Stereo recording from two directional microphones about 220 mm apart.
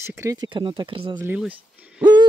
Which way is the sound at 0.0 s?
15° right (ahead or behind).